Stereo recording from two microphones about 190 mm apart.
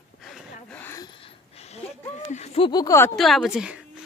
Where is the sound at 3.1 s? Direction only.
Centre (ahead or behind).